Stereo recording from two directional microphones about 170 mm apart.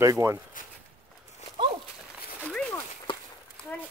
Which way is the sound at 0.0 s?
20° right (ahead or behind).